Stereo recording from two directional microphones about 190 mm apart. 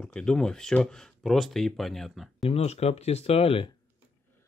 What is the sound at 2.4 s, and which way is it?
Speech, 35° left (ahead or behind).